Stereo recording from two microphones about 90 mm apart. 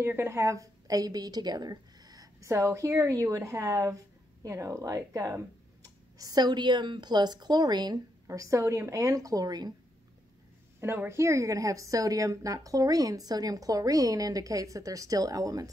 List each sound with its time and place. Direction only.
0.0 s a woman's voice: 25° right (ahead or behind); by 8.0 s 50° right (ahead or behind)
8.3 s speech: 35° right (ahead or behind)
10.8 s speech: 25° right (ahead or behind); by 15.7 s 40° right (ahead or behind)